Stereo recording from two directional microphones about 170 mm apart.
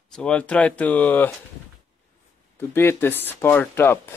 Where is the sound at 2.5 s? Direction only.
15° left (ahead or behind).